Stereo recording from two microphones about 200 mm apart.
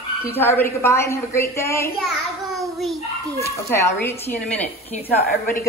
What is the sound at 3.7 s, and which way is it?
A woman's voice, 15° left (ahead or behind).